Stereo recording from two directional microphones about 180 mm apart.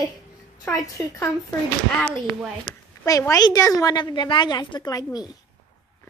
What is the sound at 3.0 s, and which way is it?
A woman's voice, 20° left (ahead or behind).